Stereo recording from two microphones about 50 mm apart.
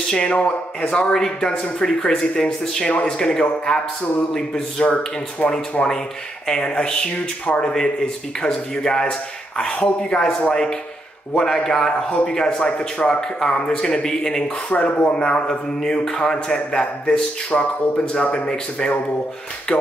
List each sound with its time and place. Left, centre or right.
0.1 s speech: centre
1.1 s a man's voice: centre
4.8 s speech: left
6.4 s speech: centre
7.7 s a man's voice: centre
19.7 s speech: left